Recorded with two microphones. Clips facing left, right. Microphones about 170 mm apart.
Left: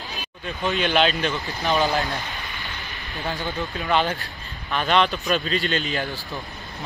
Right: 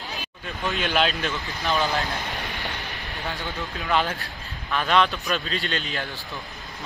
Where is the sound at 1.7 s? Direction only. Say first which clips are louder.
Left 3 dB; 20° left (ahead or behind).